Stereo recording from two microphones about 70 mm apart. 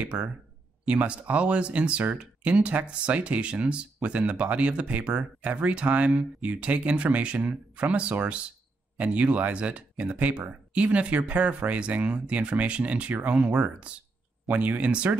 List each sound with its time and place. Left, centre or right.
0.0 s speech: centre